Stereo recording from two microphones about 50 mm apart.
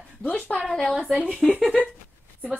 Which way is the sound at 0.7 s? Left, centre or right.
Centre.